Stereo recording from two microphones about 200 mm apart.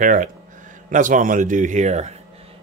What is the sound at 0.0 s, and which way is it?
Speech, 40° right (ahead or behind).